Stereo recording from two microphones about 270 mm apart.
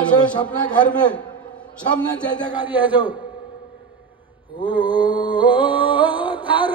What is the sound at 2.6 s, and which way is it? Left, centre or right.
Speech, centre.